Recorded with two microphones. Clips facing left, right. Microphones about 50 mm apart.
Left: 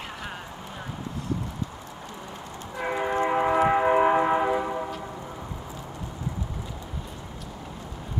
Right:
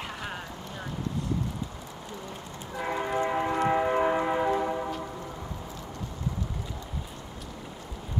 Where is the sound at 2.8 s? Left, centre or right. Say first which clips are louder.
Left 3 dB; centre.